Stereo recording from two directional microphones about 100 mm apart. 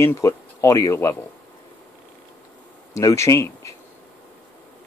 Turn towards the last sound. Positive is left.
turn(degrees=30)  # may be behind; listen again after turning